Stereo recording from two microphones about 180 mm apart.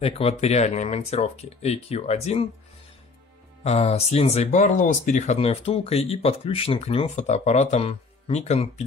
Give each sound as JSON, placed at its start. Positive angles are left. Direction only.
{"t": 0.0, "sound": "speech", "side_deg": 35}
{"t": 3.6, "sound": "speech", "side_deg": 35}